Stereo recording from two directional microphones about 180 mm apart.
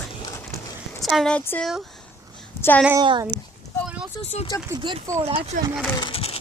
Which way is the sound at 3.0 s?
25° right (ahead or behind).